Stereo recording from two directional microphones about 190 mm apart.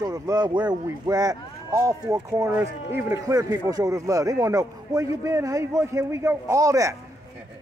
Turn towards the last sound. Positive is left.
turn(degrees=-15)  # may be behind; listen again after turning